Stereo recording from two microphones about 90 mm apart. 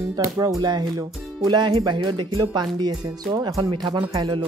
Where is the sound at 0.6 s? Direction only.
50° right (ahead or behind).